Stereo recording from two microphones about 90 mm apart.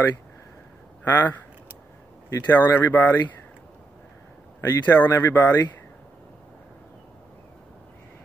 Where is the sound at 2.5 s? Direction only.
25° left (ahead or behind).